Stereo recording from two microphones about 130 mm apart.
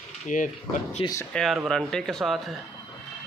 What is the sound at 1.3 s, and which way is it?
Speech, centre (ahead or behind).